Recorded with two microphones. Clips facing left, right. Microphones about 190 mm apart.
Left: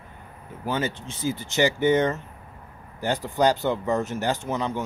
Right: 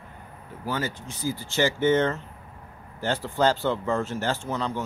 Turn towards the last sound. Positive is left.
turn(degrees=15)  # may be behind; listen again after turning